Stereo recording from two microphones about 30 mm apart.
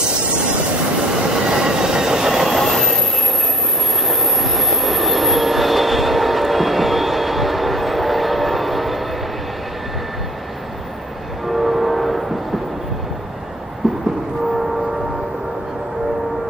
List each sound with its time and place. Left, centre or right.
1.5 s train: right
2.2 s train: centre
2.5 s train: centre
4.1 s train: centre
11.4 s train: centre
13.8 s vehicle: centre